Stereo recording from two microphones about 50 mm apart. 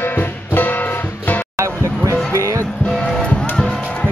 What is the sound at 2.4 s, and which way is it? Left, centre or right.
Music, right.